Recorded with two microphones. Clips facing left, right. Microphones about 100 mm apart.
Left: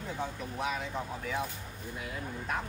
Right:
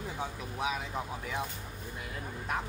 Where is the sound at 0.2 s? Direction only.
5° right (ahead or behind).